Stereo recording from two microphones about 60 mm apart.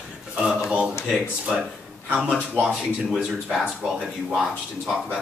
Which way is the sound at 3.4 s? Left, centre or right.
Centre.